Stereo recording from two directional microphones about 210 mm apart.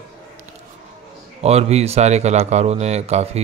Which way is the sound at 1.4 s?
30° right (ahead or behind).